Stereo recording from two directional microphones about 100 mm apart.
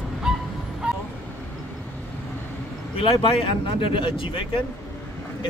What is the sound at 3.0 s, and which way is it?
Speech, 75° left (ahead or behind).